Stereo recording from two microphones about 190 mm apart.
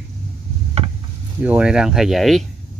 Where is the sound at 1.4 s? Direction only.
5° right (ahead or behind).